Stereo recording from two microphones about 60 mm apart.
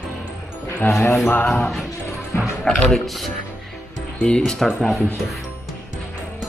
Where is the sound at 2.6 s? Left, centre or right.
Centre.